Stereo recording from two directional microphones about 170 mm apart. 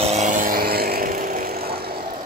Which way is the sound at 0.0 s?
40° right (ahead or behind).